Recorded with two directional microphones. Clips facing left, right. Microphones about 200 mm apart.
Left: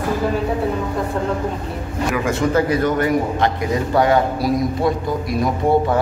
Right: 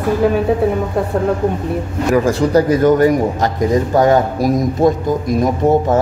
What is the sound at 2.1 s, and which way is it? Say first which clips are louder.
A man's voice: right 6 dB; 40° right (ahead or behind).